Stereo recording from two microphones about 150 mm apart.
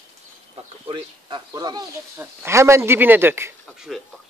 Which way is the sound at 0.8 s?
35° right (ahead or behind).